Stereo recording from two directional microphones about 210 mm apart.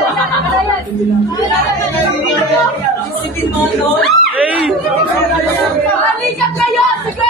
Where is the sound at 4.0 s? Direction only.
Centre (ahead or behind).